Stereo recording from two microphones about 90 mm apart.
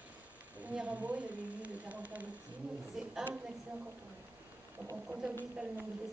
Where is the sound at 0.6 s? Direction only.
15° right (ahead or behind).